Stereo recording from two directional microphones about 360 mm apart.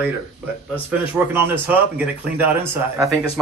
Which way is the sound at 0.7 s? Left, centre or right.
Centre.